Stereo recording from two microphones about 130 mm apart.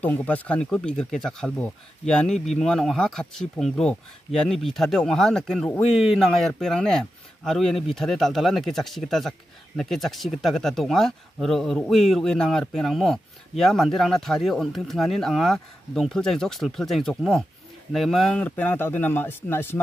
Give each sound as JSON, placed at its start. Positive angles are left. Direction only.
{"t": 0.0, "sound": "speech", "side_deg": 10}